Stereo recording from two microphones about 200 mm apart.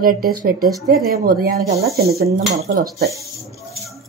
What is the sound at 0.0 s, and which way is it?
Speech, 45° right (ahead or behind).